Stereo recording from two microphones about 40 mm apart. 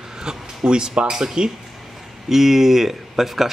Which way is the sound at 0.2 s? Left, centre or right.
Centre.